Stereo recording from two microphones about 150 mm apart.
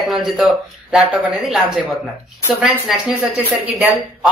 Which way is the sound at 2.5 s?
5° right (ahead or behind).